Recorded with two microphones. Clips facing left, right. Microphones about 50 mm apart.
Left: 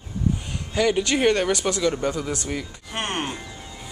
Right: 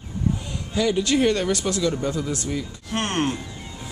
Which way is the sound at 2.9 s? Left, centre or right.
Centre.